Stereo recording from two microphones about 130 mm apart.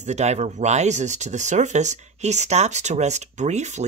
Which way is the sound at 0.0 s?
60° right (ahead or behind).